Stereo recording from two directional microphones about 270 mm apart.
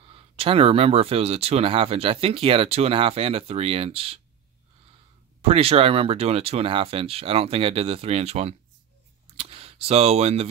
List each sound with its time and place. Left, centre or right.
0.1 s speech: right
5.4 s speech: right